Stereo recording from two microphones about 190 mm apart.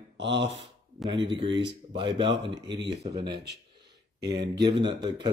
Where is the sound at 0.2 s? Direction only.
70° right (ahead or behind).